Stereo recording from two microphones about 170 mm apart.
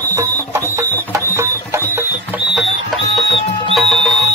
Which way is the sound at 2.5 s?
Centre (ahead or behind).